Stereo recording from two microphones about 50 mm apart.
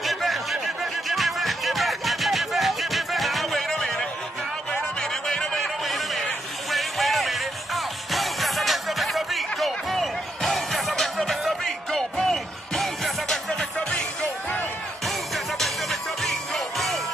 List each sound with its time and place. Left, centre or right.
0.0 s music: centre
5.2 s a sound: centre
5.6 s a sound: centre
6.7 s music: centre
13.7 s music: left
15.0 s music: centre